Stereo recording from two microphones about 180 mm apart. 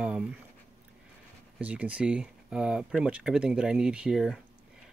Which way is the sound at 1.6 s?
10° right (ahead or behind).